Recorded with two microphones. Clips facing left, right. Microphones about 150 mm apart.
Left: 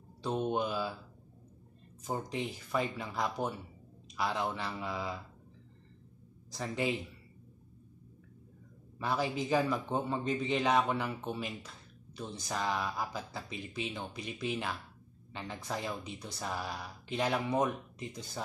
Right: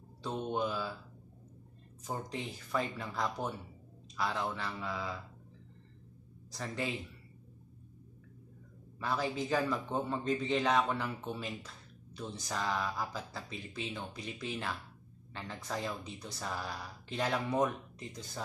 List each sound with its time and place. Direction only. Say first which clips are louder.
0.2 s mantra: left 2 dB; 15° left (ahead or behind)
2.0 s speech: left 3 dB; 10° left (ahead or behind)
6.6 s speech: left 3 dB; 15° left (ahead or behind)
9.0 s speech: left 1 dB; 10° left (ahead or behind)